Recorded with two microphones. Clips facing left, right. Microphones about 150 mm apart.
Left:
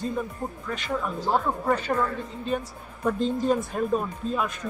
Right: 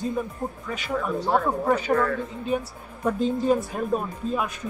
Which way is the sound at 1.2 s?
65° right (ahead or behind).